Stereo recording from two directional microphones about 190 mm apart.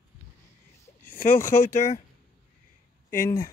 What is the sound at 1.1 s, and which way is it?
Speech, 10° left (ahead or behind).